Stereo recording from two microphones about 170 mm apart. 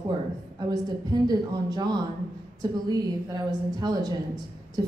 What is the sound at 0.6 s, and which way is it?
A woman's voice, 25° right (ahead or behind).